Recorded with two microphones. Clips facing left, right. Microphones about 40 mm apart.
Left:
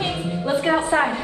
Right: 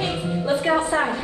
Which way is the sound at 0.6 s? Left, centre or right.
Left.